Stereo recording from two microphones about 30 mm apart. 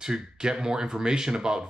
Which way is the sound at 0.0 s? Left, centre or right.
Right.